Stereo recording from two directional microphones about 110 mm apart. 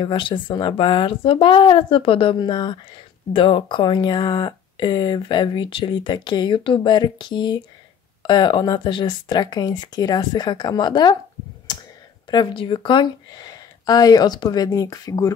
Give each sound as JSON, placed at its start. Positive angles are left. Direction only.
{"t": 0.0, "sound": "speech", "side_deg": 50}
{"t": 12.3, "sound": "speech", "side_deg": 45}